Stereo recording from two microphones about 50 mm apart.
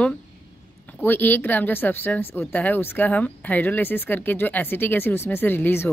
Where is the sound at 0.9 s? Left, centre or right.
Left.